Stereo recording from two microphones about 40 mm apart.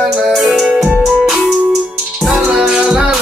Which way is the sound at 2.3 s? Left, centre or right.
Right.